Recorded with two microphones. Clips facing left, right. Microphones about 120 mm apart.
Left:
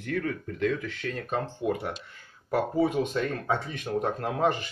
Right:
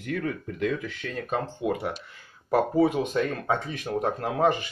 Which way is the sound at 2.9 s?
15° right (ahead or behind).